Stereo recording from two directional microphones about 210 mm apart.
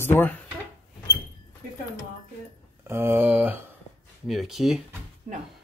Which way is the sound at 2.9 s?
10° right (ahead or behind).